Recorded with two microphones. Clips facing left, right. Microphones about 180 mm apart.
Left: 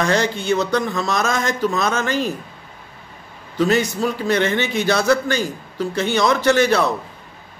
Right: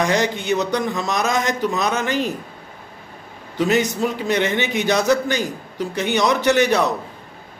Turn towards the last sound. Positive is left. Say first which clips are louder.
# left 1 dB
turn(degrees=-15)  # may be behind; listen again after turning